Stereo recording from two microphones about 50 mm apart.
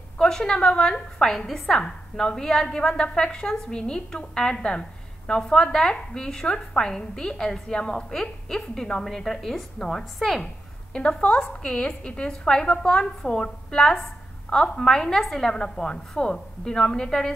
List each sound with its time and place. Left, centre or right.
0.2 s a woman's voice: centre
10.9 s a woman's voice: centre